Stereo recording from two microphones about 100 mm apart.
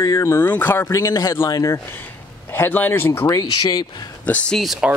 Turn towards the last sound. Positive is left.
turn(degrees=0)  # may be behind; listen again after turning